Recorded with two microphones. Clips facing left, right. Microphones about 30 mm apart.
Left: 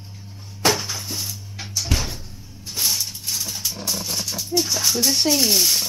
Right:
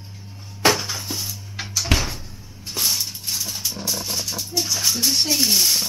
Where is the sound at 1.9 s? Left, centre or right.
Right.